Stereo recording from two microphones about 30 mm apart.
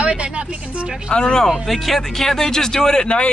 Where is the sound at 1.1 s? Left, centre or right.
Left.